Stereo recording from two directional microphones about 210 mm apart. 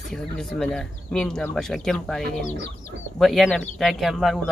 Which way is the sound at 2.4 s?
35° left (ahead or behind).